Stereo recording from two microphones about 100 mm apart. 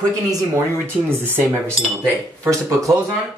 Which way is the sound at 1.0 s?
20° right (ahead or behind).